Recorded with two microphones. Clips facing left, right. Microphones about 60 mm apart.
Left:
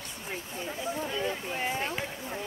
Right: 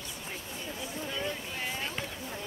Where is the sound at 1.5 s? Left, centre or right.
Left.